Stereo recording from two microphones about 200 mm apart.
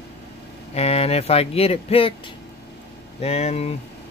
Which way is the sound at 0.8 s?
30° left (ahead or behind).